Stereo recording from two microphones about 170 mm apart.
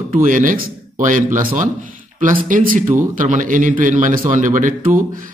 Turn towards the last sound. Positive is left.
turn(degrees=-50)  # may be behind; listen again after turning